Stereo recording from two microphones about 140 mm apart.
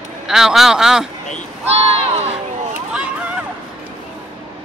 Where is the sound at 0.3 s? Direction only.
5° right (ahead or behind).